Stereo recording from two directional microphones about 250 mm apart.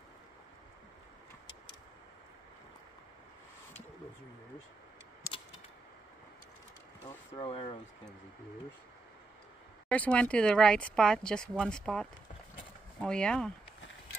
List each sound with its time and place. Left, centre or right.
7.3 s speech: centre
9.8 s speech: centre